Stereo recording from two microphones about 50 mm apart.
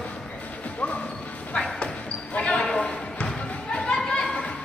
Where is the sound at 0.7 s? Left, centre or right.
Left.